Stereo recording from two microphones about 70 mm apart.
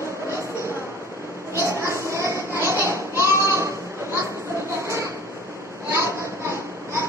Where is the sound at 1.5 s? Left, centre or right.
Right.